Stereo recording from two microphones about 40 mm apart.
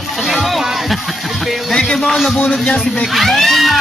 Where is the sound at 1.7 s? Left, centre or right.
Centre.